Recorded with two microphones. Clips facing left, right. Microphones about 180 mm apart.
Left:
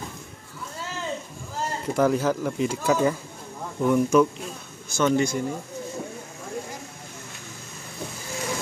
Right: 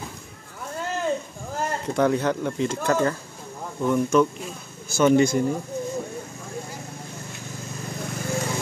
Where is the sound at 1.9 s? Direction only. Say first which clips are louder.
Even; 5° left (ahead or behind).